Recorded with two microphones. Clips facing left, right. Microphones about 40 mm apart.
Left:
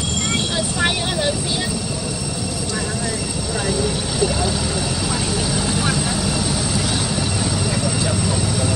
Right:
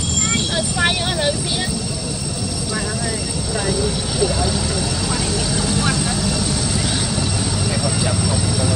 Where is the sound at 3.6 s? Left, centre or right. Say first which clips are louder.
Even; centre.